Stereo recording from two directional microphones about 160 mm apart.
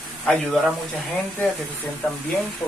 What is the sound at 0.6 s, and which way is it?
Speech, centre (ahead or behind).